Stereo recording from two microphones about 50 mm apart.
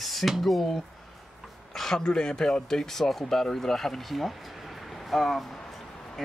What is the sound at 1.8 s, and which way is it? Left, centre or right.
Speech, centre.